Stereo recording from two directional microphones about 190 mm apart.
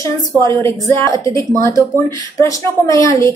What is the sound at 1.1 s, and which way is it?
A woman's voice, 15° left (ahead or behind).